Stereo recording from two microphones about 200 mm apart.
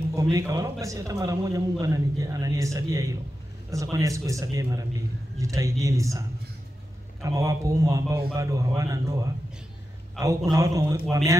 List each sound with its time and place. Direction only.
0.1 s a man's voice: 15° right (ahead or behind)